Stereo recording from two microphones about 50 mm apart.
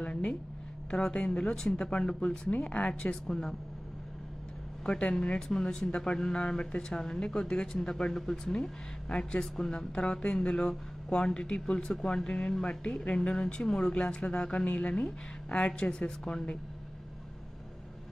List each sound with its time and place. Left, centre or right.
0.0 s a sound: left
0.8 s speech: centre
4.8 s speech: centre